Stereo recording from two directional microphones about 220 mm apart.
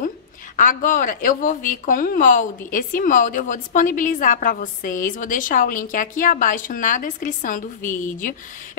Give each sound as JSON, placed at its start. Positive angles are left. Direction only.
{"t": 0.6, "sound": "a woman's voice", "side_deg": 35}